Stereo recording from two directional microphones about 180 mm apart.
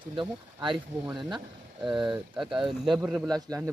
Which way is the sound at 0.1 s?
25° right (ahead or behind).